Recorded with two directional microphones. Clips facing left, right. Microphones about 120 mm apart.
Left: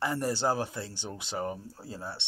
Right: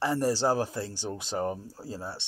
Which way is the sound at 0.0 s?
35° right (ahead or behind).